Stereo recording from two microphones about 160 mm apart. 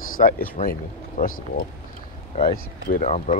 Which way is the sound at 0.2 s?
55° left (ahead or behind).